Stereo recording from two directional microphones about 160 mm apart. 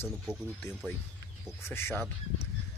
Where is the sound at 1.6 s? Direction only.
15° left (ahead or behind).